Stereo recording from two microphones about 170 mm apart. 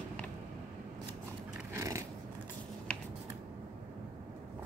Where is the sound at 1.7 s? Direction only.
20° right (ahead or behind).